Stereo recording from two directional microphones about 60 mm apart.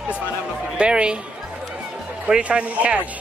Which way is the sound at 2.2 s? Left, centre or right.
Centre.